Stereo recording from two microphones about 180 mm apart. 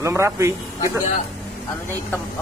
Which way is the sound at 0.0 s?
15° right (ahead or behind).